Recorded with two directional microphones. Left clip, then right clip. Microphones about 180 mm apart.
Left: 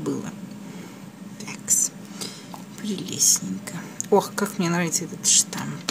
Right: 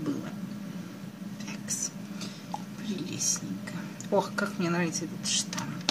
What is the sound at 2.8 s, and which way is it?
Speech, 50° left (ahead or behind).